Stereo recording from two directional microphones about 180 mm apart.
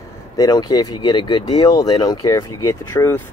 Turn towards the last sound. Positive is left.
turn(degrees=15)  # may be behind; listen again after turning